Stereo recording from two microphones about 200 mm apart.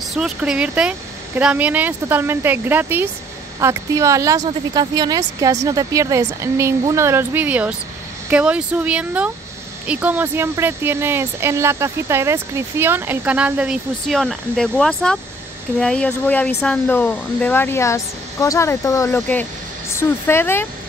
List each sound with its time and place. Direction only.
0.1 s a woman's voice: 5° right (ahead or behind)